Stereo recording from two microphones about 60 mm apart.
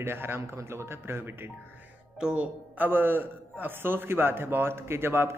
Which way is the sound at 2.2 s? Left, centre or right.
Centre.